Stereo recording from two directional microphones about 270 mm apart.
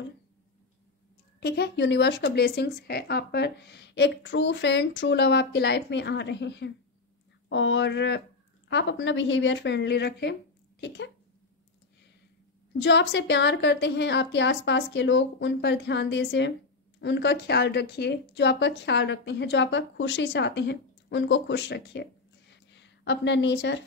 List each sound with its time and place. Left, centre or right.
1.4 s speech: left
12.8 s speech: left